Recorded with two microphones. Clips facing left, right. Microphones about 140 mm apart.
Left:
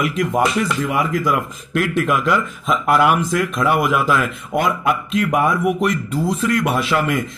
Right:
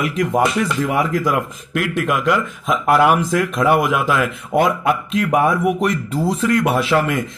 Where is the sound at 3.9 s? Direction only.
15° right (ahead or behind).